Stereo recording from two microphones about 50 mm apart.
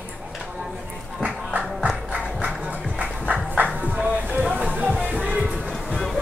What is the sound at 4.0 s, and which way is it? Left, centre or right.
Music, right.